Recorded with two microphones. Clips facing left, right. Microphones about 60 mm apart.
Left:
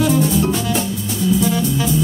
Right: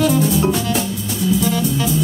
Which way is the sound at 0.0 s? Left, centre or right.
Centre.